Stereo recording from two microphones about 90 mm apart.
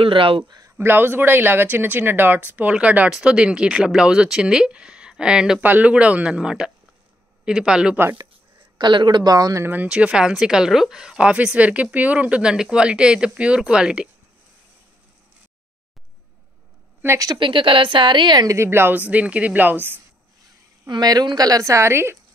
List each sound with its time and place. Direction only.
0.0 s speech: 80° right
0.6 s speech: 30° right (ahead or behind); by 8.0 s 10° right (ahead or behind)
8.7 s a woman's voice: 60° right (ahead or behind); by 9.7 s 40° right (ahead or behind)
9.8 s speech: 10° right (ahead or behind)
17.4 s a woman's voice: 70° right (ahead or behind)
18.5 s speech: 30° right (ahead or behind)
20.9 s a woman's voice: 50° right (ahead or behind); by 22.2 s 30° right (ahead or behind)